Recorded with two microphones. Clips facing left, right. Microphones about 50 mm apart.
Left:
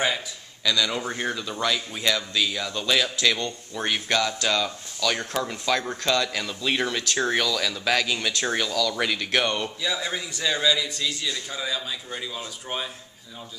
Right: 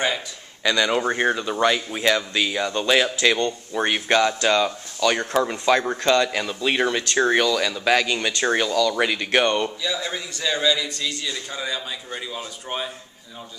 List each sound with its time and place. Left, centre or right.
0.7 s speech: right; by 9.7 s centre
9.8 s a man's voice: centre